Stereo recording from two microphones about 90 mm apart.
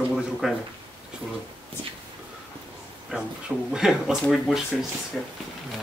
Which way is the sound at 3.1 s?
10° right (ahead or behind).